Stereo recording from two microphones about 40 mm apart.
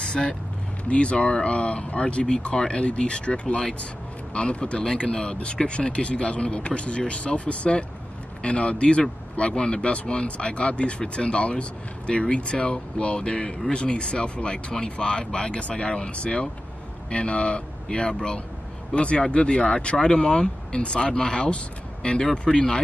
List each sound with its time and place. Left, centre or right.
0.0 s speech: left